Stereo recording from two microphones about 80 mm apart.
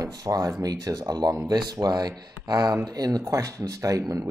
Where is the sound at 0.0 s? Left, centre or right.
Right.